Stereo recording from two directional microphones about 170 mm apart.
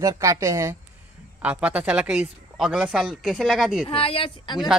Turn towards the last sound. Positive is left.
turn(degrees=30)  # may be behind; listen again after turning